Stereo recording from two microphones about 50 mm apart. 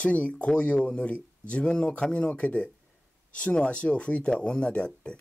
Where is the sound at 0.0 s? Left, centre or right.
Left.